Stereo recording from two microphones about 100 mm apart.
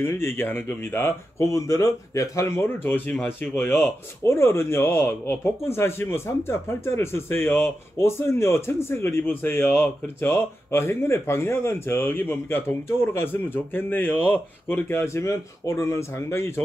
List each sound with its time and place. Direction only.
0.0 s speech: 25° left (ahead or behind)